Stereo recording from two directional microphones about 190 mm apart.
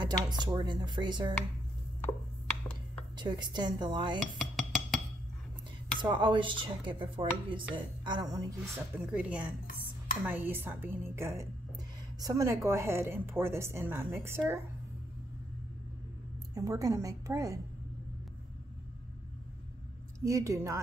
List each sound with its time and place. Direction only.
0.0 s speech: 20° right (ahead or behind)
3.2 s speech: 25° right (ahead or behind)
4.4 s a sound: centre (ahead or behind)
5.9 s speech: 25° right (ahead or behind)
8.9 s a woman's voice: 5° right (ahead or behind)
16.5 s a woman's voice: 15° right (ahead or behind)
20.2 s a woman's voice: 15° right (ahead or behind)